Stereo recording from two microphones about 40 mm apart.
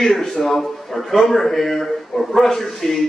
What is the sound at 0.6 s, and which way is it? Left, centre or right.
A man's voice, centre.